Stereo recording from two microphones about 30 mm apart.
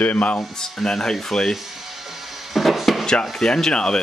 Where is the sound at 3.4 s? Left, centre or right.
Left.